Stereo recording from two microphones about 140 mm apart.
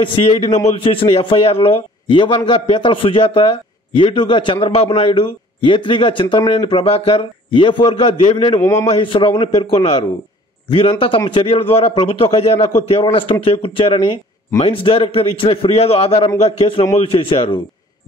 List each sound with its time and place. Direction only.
0.0 s a man's voice: 35° left (ahead or behind)
8.5 s a man's voice: 20° left (ahead or behind)
8.8 s a man's voice: 40° left (ahead or behind)